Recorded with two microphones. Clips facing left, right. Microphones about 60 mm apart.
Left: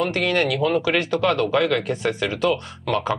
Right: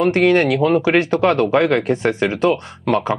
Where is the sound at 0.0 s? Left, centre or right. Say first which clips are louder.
Right 7 dB; right.